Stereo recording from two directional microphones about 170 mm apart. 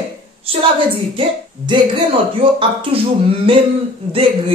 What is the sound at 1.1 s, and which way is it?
A woman's voice, 30° right (ahead or behind).